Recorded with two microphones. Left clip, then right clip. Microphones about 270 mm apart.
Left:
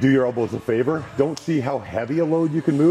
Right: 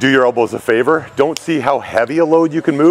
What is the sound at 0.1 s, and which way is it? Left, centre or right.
Speech, centre.